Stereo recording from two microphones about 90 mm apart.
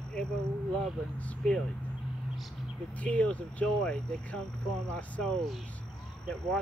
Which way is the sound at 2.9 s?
15° left (ahead or behind).